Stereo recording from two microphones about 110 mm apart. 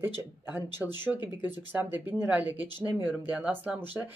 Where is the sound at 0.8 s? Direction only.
10° right (ahead or behind).